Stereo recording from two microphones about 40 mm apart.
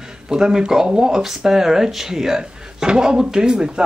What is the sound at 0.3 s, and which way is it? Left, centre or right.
Speech, centre.